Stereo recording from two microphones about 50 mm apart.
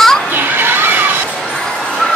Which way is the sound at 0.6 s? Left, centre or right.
Right.